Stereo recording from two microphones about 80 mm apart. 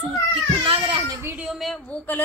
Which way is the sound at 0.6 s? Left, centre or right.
Right.